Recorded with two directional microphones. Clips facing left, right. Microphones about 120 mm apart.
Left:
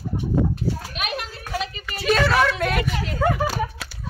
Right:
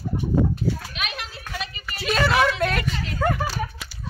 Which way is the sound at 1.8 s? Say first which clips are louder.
Left 2 dB; centre (ahead or behind).